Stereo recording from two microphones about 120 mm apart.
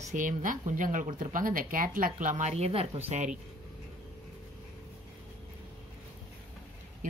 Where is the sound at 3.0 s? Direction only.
80° right.